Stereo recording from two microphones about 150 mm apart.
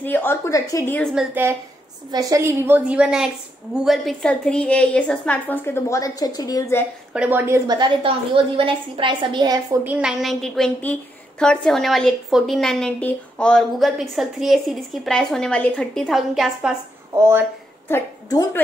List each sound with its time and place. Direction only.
0.0 s a woman's voice: 15° left (ahead or behind)
1.1 s a woman's voice: 15° right (ahead or behind); by 6.8 s 25° left (ahead or behind)
7.2 s a woman's voice: 15° right (ahead or behind)
9.8 s a woman's voice: 5° right (ahead or behind)
17.2 s a woman's voice: 15° right (ahead or behind)
17.8 s a woman's voice: 20° left (ahead or behind)